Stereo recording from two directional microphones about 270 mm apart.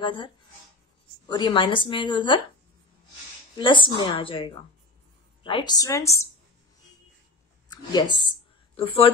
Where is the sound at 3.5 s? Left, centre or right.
Centre.